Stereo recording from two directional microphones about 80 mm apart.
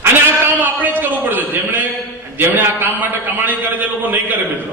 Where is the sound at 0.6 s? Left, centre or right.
Right.